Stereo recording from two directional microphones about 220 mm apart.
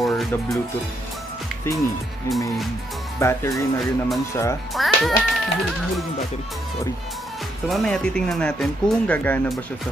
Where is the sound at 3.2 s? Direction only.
15° left (ahead or behind).